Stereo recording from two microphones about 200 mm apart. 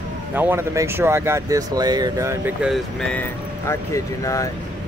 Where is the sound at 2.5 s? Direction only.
Centre (ahead or behind); by 4.5 s 15° left (ahead or behind).